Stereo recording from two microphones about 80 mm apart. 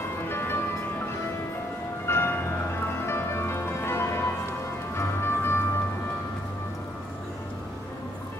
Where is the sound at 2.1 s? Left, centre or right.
Left.